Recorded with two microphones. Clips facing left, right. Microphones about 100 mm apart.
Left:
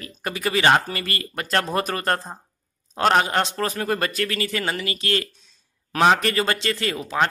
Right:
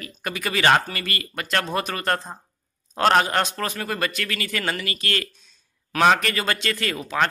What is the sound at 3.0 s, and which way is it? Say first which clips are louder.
A man's voice: even; 10° left (ahead or behind).